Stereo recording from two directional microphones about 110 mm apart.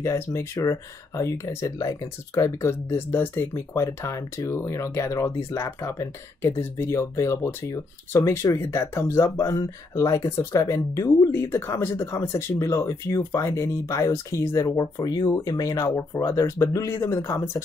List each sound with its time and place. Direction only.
0.0 s speech: 25° left (ahead or behind)